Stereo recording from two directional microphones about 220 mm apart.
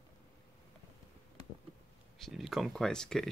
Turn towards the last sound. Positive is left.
turn(degrees=5)  # may be behind; listen again after turning